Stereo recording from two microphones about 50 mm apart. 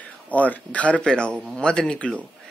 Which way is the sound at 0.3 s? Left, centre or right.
Left.